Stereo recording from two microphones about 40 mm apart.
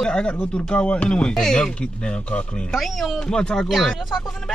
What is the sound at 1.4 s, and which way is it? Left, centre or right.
Speech, centre.